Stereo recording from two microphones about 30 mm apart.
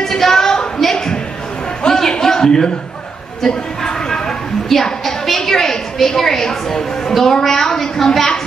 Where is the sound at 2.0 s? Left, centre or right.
Centre.